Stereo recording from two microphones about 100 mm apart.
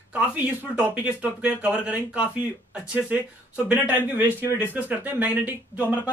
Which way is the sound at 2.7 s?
10° right (ahead or behind).